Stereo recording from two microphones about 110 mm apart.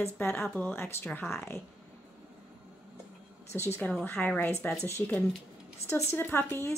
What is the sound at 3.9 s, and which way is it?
Speech, 15° left (ahead or behind).